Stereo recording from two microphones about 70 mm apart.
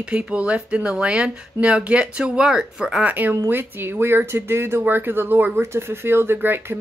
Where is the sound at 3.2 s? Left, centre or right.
Right.